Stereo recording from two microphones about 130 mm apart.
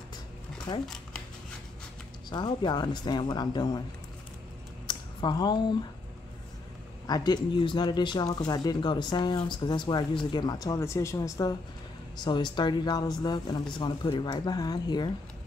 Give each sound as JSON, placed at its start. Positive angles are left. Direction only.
{"t": 0.8, "sound": "a sound", "side_deg": 5}
{"t": 2.2, "sound": "speech", "side_deg": 35}
{"t": 4.8, "sound": "speech", "side_deg": 35}
{"t": 7.1, "sound": "speech", "side_deg": 30}